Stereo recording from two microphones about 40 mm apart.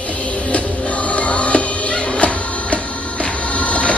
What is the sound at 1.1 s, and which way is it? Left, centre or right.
Music, left.